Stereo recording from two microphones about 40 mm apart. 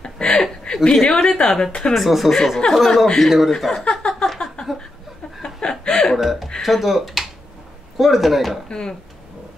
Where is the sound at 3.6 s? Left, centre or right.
Centre.